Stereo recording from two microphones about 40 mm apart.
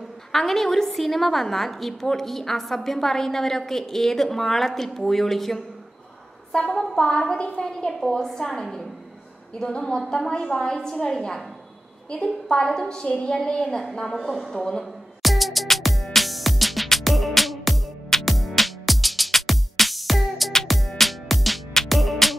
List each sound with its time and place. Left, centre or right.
0.3 s a woman's voice: centre
6.5 s a woman's voice: left
14.0 s a woman's voice: centre
15.2 s music: centre